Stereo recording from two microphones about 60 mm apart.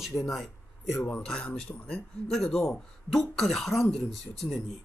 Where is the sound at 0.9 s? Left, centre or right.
Left.